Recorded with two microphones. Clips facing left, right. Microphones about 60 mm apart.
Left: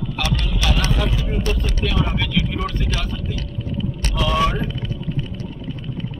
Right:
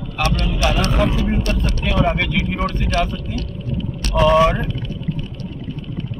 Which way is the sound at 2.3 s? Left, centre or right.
Right.